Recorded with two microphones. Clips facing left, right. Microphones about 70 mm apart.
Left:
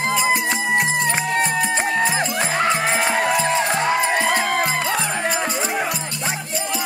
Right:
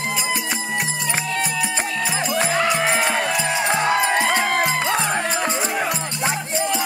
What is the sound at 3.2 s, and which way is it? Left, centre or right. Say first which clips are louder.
Music: left 3 dB; left.